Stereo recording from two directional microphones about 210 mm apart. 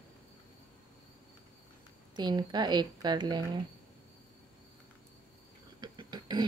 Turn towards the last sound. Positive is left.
turn(degrees=-20)  # may be behind; listen again after turning